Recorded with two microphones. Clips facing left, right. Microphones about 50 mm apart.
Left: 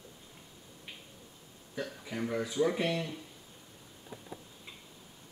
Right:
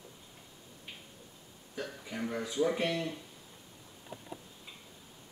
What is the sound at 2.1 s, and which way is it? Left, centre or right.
Speech, centre.